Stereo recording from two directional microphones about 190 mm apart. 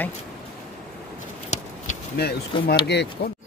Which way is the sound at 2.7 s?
60° left (ahead or behind).